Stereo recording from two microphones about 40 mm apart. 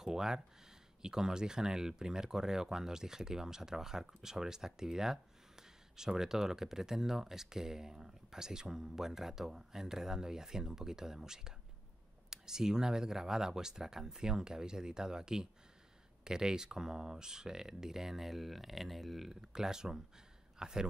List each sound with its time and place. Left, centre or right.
0.0 s speech: centre
19.5 s speech: centre